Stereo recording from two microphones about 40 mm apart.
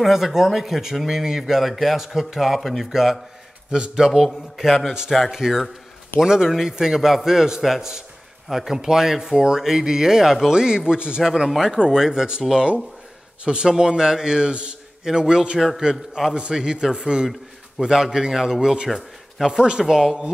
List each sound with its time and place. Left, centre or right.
0.0 s speech: centre
3.7 s a man's voice: centre
4.1 s a man's voice: centre
6.2 s a man's voice: centre
11.4 s a man's voice: centre; by 14.8 s right
15.0 s a man's voice: centre